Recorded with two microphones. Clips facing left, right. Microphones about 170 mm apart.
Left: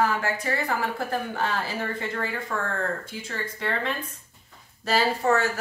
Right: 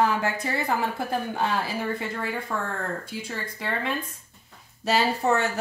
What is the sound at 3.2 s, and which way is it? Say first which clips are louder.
Speech: left 2 dB; 10° right (ahead or behind).